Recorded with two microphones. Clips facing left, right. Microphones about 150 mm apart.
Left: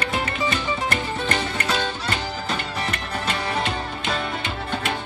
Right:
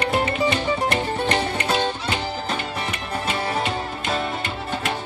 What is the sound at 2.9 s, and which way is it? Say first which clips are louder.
Music: right 1 dB; 5° right (ahead or behind).